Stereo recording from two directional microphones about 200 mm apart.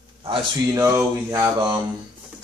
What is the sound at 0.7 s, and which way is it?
Speech, 15° right (ahead or behind).